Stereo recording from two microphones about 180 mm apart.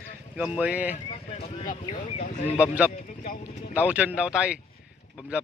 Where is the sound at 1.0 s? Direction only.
35° left (ahead or behind).